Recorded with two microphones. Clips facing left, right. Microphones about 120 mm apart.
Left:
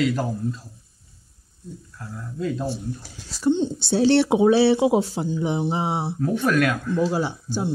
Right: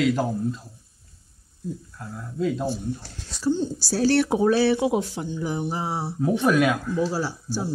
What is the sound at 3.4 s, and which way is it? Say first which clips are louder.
Speech: left 3 dB; 25° left (ahead or behind).